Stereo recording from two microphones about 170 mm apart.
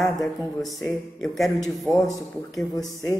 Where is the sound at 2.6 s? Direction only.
20° left (ahead or behind).